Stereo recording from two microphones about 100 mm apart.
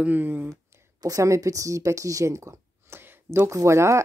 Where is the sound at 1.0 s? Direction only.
35° right (ahead or behind).